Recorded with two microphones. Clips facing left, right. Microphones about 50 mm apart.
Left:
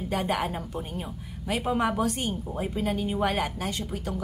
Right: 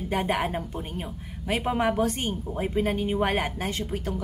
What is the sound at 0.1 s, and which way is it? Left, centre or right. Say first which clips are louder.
A woman's voice: right 2 dB; right.